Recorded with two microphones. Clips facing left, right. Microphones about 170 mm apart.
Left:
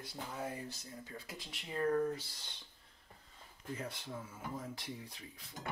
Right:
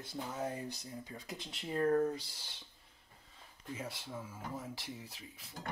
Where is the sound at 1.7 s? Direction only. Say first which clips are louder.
Right 3 dB; 40° right (ahead or behind).